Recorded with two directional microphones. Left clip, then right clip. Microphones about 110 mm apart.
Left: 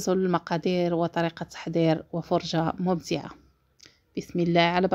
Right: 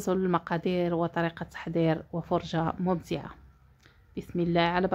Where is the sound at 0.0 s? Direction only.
35° left (ahead or behind).